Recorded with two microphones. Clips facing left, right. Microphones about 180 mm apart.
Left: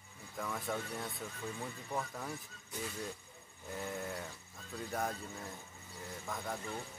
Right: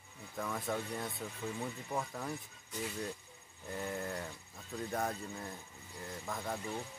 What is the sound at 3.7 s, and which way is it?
Speech, centre (ahead or behind).